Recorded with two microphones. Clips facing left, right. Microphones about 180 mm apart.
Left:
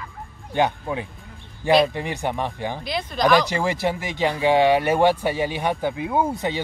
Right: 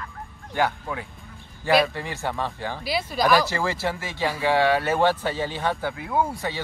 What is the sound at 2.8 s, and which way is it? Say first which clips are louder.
Speech: left 1 dB; 5° right (ahead or behind).